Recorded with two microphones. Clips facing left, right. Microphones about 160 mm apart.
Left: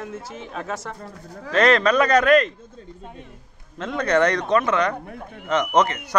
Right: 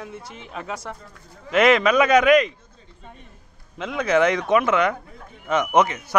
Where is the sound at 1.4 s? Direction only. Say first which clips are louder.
Right 1 dB; 10° right (ahead or behind).